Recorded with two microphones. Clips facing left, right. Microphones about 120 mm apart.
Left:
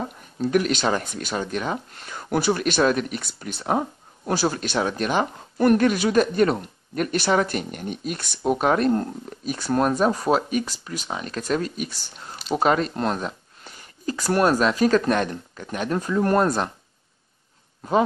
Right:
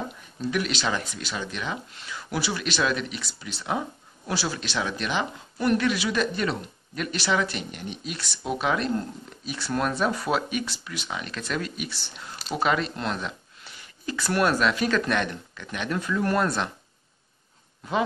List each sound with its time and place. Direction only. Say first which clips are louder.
0.4 s speech: left 6 dB; 45° left (ahead or behind)
17.8 s speech: left 6 dB; 45° left (ahead or behind)